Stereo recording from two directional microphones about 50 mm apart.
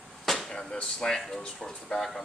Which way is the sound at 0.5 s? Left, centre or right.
Centre.